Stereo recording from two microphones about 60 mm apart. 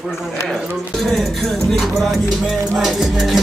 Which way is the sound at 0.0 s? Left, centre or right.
Centre.